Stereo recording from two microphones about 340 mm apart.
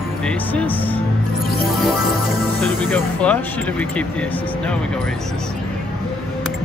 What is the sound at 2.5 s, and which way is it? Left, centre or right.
Music, centre.